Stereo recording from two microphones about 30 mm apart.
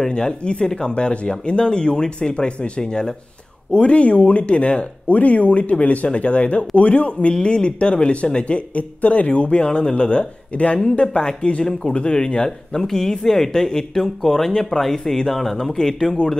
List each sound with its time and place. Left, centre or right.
0.1 s speech: left
2.8 s speech: left
3.7 s speech: left
6.0 s speech: left
7.3 s speech: left
10.8 s speech: left
12.4 s speech: centre